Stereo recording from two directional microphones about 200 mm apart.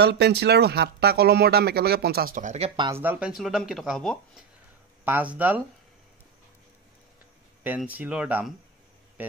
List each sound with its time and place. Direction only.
0.0 s speech: 55° right (ahead or behind); by 3.0 s 25° right (ahead or behind)
3.0 s speech: 5° right (ahead or behind)
7.6 s speech: 10° right (ahead or behind)